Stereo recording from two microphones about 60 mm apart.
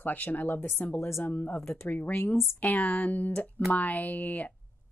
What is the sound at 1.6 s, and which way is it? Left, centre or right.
Speech, left.